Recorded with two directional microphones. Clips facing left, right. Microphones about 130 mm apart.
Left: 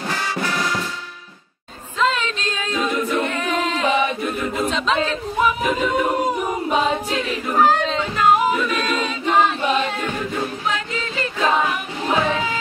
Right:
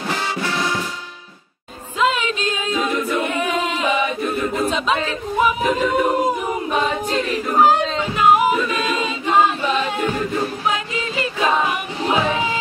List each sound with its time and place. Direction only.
0.1 s music: 25° right (ahead or behind)
2.0 s a capella: 10° right (ahead or behind)
3.3 s choir: 15° right (ahead or behind)
4.6 s speech: 10° right (ahead or behind)
7.4 s a sound: 10° right (ahead or behind)
10.7 s music: 15° right (ahead or behind)
11.6 s singing: 10° right (ahead or behind)